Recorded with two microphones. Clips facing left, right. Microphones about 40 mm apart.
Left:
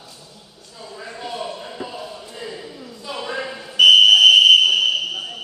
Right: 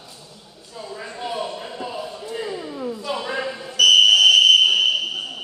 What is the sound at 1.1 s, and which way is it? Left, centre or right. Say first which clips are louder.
Basketball bounce: right 1 dB; centre.